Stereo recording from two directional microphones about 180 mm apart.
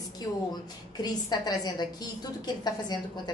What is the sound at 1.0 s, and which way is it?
A woman's voice, 20° left (ahead or behind).